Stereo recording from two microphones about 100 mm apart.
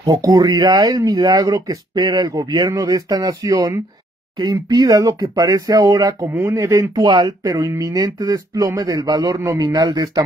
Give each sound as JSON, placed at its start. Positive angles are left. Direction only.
{"t": 0.0, "sound": "speech", "side_deg": -35}
{"t": 7.0, "sound": "speech", "side_deg": -45}
{"t": 7.4, "sound": "speech", "side_deg": -35}